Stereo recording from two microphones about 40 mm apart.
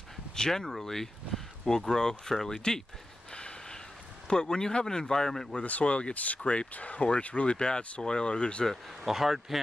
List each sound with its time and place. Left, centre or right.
0.4 s speech: centre
3.3 s snort: left
4.3 s speech: centre
5.7 s speech: left
7.5 s speech: left
9.0 s speech: centre